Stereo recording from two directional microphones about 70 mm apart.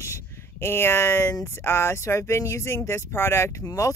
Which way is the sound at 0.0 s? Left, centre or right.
Left.